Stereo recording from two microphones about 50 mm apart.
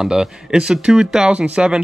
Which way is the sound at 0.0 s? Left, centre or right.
Centre.